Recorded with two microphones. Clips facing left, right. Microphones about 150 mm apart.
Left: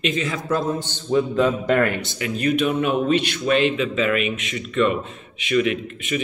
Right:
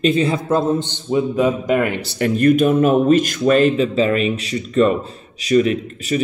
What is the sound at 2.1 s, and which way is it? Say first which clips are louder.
Speech: right 9 dB; 50° right (ahead or behind).